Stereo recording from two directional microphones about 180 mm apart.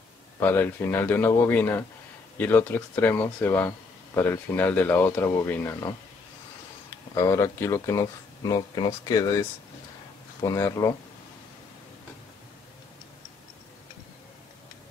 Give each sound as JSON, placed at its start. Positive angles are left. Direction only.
{"t": 0.4, "sound": "speech", "side_deg": 10}
{"t": 7.2, "sound": "speech", "side_deg": 15}